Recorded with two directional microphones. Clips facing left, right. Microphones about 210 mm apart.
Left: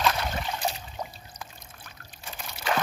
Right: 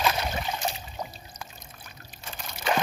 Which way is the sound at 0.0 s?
10° right (ahead or behind).